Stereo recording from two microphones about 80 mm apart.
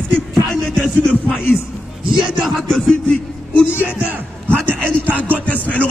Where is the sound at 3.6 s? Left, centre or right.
Left.